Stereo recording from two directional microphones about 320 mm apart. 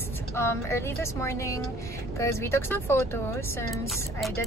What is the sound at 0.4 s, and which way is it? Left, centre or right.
Speech, centre.